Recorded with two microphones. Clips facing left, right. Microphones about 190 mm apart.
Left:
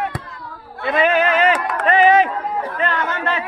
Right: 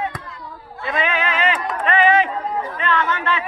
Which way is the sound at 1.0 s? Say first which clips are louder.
Left 6 dB; 45° left (ahead or behind).